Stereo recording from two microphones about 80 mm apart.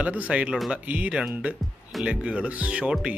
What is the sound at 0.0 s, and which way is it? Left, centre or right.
Speech, centre.